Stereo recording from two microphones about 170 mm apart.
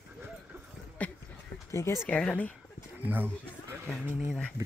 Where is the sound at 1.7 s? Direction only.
15° left (ahead or behind).